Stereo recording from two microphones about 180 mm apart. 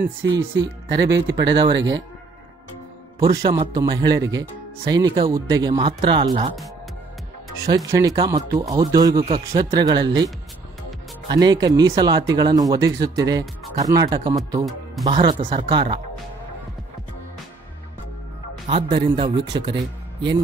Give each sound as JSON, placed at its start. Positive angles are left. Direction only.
{"t": 0.4, "sound": "speech", "side_deg": -85}
{"t": 3.2, "sound": "speech", "side_deg": -20}
{"t": 7.5, "sound": "speech", "side_deg": -20}
{"t": 18.7, "sound": "speech", "side_deg": -25}